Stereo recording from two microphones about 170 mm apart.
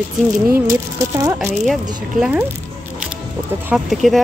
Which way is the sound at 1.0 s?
20° right (ahead or behind).